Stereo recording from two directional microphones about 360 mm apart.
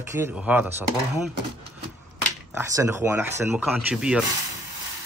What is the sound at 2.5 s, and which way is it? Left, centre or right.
Speech, centre.